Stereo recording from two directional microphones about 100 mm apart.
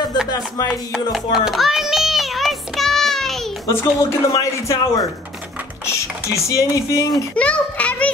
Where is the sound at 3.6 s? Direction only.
30° left (ahead or behind).